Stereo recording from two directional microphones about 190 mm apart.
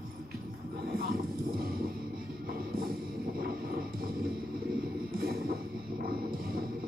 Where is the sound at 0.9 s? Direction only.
50° right (ahead or behind).